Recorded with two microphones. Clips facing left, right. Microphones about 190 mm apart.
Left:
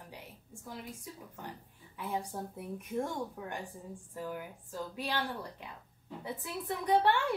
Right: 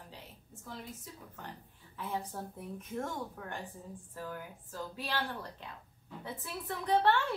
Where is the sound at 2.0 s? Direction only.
15° left (ahead or behind).